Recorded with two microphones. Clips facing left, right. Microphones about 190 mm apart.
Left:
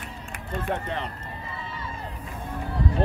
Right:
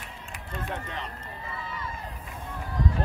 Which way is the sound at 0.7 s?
55° left (ahead or behind).